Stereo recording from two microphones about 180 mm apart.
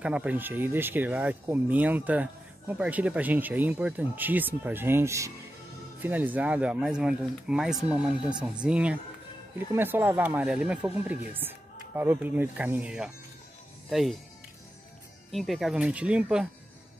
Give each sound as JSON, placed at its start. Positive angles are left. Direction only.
{"t": 0.0, "sound": "speech", "side_deg": -5}
{"t": 15.3, "sound": "speech", "side_deg": 0}